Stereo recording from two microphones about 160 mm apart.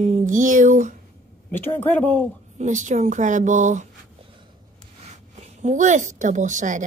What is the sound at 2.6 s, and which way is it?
A woman's voice, 50° right (ahead or behind).